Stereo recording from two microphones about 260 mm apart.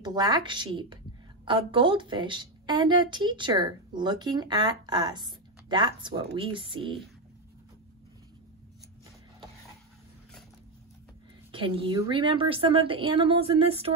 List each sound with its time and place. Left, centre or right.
0.0 s a woman's voice: centre
11.5 s a woman's voice: centre